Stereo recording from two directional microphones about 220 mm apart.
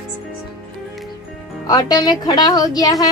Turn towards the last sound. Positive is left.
turn(degrees=15)  # may be behind; listen again after turning